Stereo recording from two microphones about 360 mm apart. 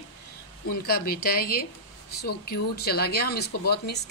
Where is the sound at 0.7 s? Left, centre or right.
Left.